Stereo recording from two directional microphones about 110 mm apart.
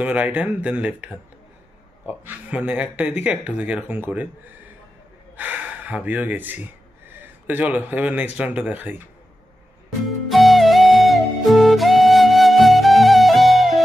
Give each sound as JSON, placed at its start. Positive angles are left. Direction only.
{"t": 0.0, "sound": "speech", "side_deg": -15}
{"t": 5.3, "sound": "speech", "side_deg": -15}
{"t": 10.0, "sound": "music", "side_deg": 0}